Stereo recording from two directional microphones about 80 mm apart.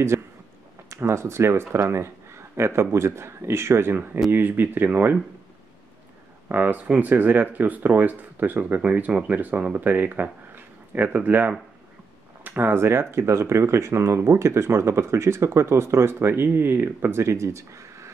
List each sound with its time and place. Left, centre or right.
0.1 s speech: right
6.5 s speech: right